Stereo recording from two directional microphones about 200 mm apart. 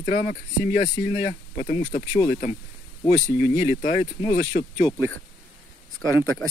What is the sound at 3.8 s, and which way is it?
Speech, 35° left (ahead or behind).